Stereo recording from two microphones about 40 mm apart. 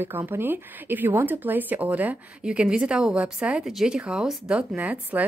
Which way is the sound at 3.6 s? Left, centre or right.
Centre.